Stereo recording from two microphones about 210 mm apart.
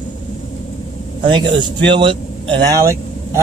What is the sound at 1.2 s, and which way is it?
Speech, 20° right (ahead or behind).